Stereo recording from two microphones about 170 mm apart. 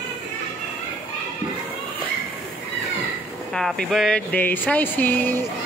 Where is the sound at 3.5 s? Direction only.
5° left (ahead or behind).